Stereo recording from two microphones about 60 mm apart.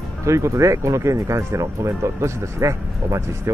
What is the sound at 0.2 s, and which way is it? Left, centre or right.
Speech, right.